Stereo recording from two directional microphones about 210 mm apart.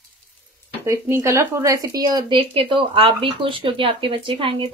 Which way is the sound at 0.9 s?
15° right (ahead or behind).